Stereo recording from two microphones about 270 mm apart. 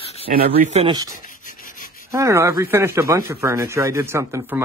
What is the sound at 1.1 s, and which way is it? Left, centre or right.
Rub, left.